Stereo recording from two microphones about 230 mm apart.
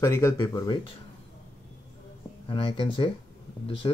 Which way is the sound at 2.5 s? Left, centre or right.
Left.